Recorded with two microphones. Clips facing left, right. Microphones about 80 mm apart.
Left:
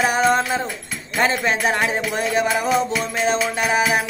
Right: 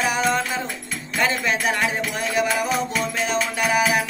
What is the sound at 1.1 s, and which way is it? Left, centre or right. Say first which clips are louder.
Music: left 3 dB; left.